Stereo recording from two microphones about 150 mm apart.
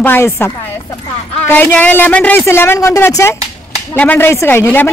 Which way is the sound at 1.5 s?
10° left (ahead or behind).